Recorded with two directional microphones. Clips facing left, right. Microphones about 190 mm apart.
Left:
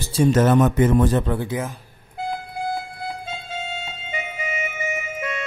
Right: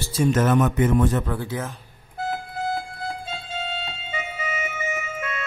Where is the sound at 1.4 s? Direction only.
15° left (ahead or behind).